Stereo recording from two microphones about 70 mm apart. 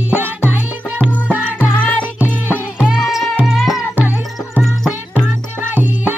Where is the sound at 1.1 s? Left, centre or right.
Left.